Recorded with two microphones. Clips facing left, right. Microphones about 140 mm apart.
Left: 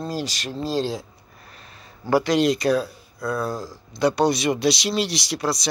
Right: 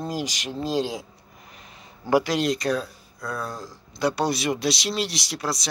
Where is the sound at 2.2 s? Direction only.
Centre (ahead or behind).